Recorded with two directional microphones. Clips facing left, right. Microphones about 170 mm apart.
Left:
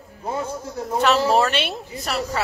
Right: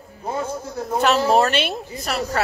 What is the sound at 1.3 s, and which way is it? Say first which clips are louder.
Speech: right 2 dB; 45° right (ahead or behind).